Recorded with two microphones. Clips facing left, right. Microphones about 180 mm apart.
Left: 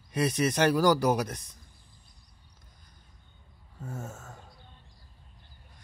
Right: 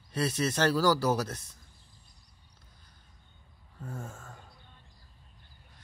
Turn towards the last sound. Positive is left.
turn(degrees=5)  # may be behind; listen again after turning